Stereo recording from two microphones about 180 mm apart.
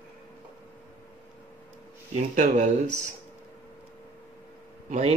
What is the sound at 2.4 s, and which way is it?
Speech, 40° right (ahead or behind).